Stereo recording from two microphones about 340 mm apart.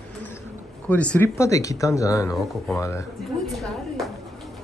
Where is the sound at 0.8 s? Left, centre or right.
Centre.